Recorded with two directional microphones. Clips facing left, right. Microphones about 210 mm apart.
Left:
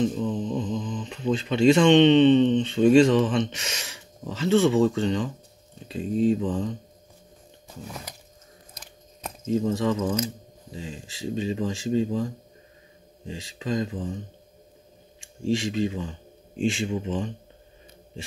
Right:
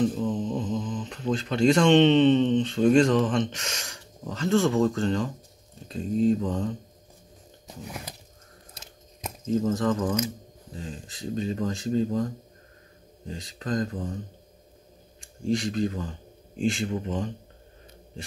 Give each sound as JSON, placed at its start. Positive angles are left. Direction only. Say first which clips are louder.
{"t": 0.0, "sound": "mantra", "louder": "even", "side_deg": 0}
{"t": 1.3, "sound": "speech", "louder": "left 3 dB", "side_deg": 0}
{"t": 9.7, "sound": "speech", "louder": "even", "side_deg": 0}
{"t": 13.3, "sound": "speech", "louder": "left 1 dB", "side_deg": 0}
{"t": 15.5, "sound": "speech", "louder": "left 1 dB", "side_deg": 0}